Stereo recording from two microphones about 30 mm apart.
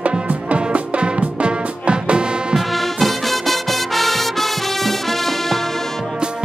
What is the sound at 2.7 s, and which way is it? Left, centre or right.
Music, centre.